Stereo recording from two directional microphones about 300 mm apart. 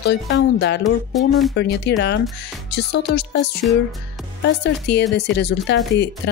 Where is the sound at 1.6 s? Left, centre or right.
Left.